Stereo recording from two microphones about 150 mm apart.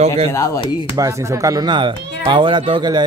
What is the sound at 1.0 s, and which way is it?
Speech, 20° right (ahead or behind).